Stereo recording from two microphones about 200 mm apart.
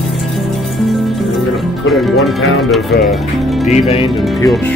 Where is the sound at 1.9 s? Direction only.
Centre (ahead or behind).